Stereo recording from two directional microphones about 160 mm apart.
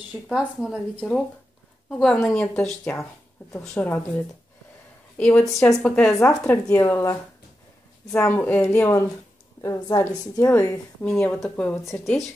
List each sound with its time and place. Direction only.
0.3 s a woman's voice: 5° right (ahead or behind)
5.1 s a woman's voice: 10° left (ahead or behind)
11.9 s speech: centre (ahead or behind)